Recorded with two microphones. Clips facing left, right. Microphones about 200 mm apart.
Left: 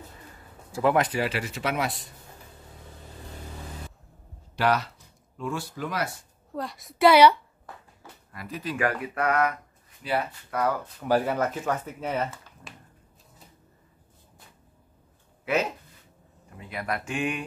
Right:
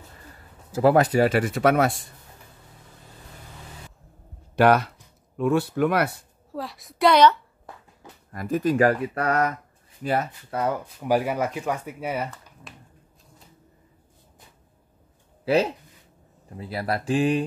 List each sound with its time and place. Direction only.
0.7 s speech: 35° right (ahead or behind); by 2.0 s 50° right (ahead or behind)
4.6 s speech: 55° right (ahead or behind)
6.5 s a woman's voice: centre (ahead or behind)
8.3 s speech: 45° right (ahead or behind)
10.5 s speech: 25° right (ahead or behind)
10.8 s speech: 15° right (ahead or behind)
12.7 s a sound: centre (ahead or behind)
15.4 s speech: 35° right (ahead or behind)